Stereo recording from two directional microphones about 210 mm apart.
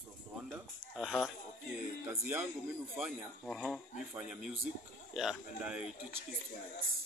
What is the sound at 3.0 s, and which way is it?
Speech, centre (ahead or behind).